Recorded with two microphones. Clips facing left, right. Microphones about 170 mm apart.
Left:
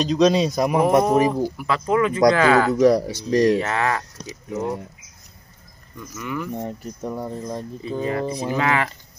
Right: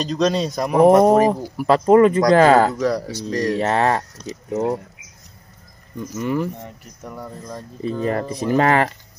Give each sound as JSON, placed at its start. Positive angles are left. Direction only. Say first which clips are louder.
{"t": 0.0, "sound": "speech", "louder": "left 3 dB", "side_deg": 5}
{"t": 0.8, "sound": "speech", "louder": "right 7 dB", "side_deg": -40}
{"t": 2.8, "sound": "speech", "louder": "left 5 dB", "side_deg": 15}
{"t": 3.5, "sound": "speech", "louder": "right 4 dB", "side_deg": -35}
{"t": 5.9, "sound": "speech", "louder": "right 7 dB", "side_deg": -35}
{"t": 7.0, "sound": "speech", "louder": "left 4 dB", "side_deg": 25}
{"t": 7.8, "sound": "speech", "louder": "right 3 dB", "side_deg": -45}